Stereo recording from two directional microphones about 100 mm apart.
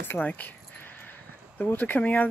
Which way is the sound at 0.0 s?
15° left (ahead or behind).